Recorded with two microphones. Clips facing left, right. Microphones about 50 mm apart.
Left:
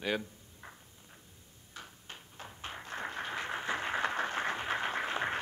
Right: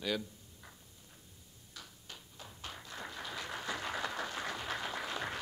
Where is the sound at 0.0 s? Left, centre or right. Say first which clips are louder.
Left 2 dB; left.